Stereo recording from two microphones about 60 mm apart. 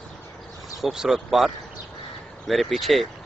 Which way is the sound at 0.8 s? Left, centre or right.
Centre.